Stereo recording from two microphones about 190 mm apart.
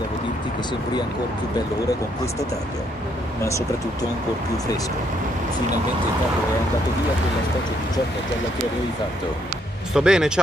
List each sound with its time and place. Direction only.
3.4 s speech: 15° left (ahead or behind)
9.9 s speech: 5° right (ahead or behind)